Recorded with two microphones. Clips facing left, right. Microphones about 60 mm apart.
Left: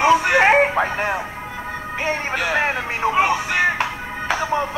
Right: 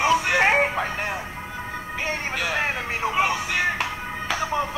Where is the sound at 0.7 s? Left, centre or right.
Left.